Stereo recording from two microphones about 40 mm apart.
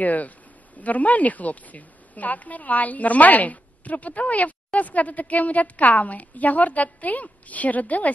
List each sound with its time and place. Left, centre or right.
0.0 s a woman's voice: left